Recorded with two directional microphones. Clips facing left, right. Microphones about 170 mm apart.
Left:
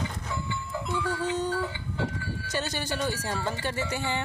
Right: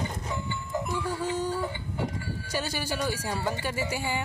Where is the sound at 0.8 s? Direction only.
15° right (ahead or behind).